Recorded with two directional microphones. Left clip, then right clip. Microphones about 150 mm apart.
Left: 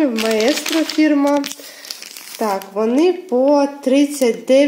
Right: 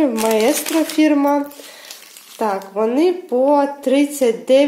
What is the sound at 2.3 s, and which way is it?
Speech, 10° right (ahead or behind).